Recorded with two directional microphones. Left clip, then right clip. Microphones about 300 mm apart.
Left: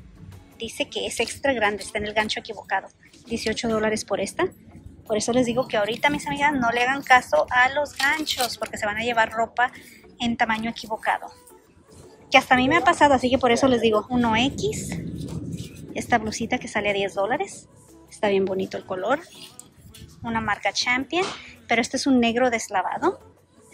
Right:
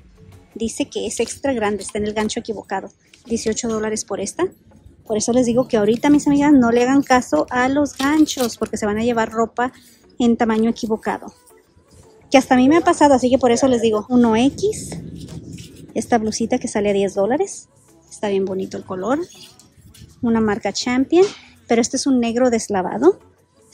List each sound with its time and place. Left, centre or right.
0.6 s a woman's voice: centre
12.3 s a woman's voice: centre
20.2 s a woman's voice: centre